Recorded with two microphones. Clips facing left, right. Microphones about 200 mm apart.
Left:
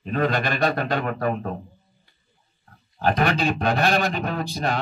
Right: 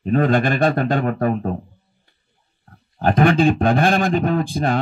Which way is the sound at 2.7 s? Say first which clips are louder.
Right 4 dB; 50° right (ahead or behind).